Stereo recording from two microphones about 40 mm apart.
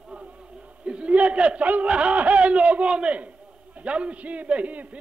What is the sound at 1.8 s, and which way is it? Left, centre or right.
A man's voice, right.